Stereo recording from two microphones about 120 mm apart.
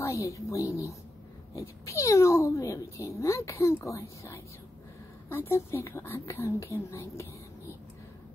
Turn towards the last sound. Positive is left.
turn(degrees=25)  # may be behind; listen again after turning